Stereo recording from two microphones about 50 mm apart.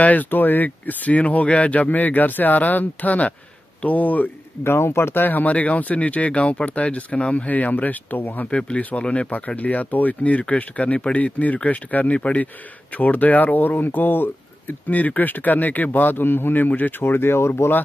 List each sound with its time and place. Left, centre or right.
0.0 s speech: left
4.6 s speech: left
5.2 s speech: left
8.5 s speech: left
9.6 s speech: left
17.0 s speech: left